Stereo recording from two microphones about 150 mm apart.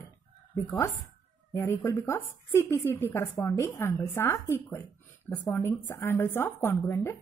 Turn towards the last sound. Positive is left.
turn(degrees=15)  # may be behind; listen again after turning